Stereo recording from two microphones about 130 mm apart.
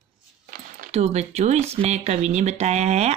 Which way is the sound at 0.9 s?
55° right (ahead or behind).